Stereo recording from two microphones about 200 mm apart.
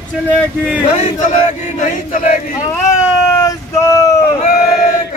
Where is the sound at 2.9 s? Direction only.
15° left (ahead or behind).